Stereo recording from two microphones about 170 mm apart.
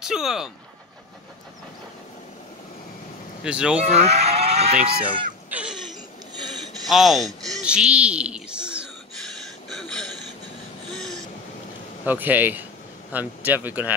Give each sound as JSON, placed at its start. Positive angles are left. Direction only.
{"t": 0.0, "sound": "speech", "side_deg": -5}
{"t": 3.4, "sound": "speech", "side_deg": -5}
{"t": 3.8, "sound": "speech", "side_deg": -40}
{"t": 5.5, "sound": "a sound", "side_deg": -5}
{"t": 6.9, "sound": "speech", "side_deg": 0}
{"t": 7.4, "sound": "a sound", "side_deg": 0}
{"t": 9.7, "sound": "gasp", "side_deg": 0}
{"t": 10.9, "sound": "vehicle", "side_deg": 0}
{"t": 12.1, "sound": "speech", "side_deg": -10}